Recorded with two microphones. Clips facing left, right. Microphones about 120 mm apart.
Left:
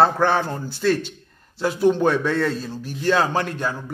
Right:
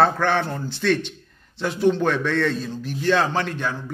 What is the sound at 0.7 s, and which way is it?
Speech, 10° left (ahead or behind).